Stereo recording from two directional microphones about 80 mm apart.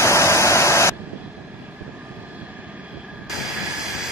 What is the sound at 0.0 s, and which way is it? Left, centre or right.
Static, left.